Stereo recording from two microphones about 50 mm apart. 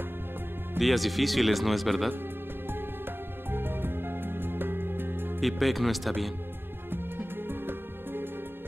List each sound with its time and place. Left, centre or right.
0.7 s speech: centre
3.5 s music: right
5.4 s speech: centre
6.9 s music: right